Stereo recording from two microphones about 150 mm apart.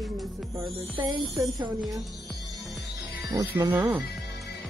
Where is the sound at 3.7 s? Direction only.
10° right (ahead or behind).